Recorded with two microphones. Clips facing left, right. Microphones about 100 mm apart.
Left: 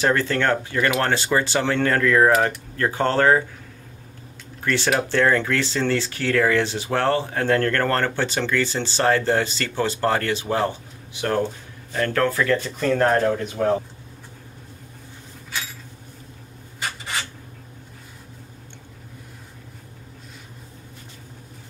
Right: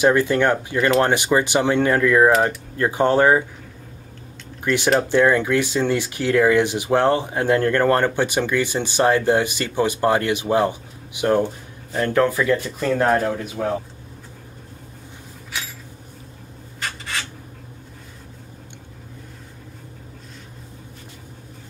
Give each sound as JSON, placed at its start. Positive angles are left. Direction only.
{"t": 0.0, "sound": "speech", "side_deg": -15}
{"t": 4.6, "sound": "speech", "side_deg": -15}